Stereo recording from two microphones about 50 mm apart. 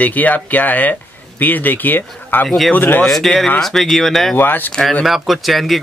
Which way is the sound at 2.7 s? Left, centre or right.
Left.